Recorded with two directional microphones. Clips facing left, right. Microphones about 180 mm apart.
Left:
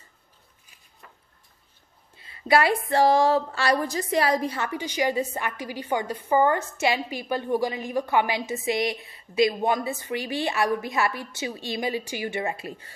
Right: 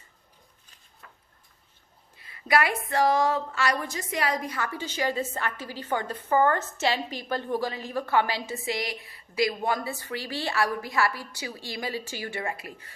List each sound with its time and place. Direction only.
2.1 s a woman's voice: 25° left (ahead or behind)
4.6 s a woman's voice: 15° left (ahead or behind)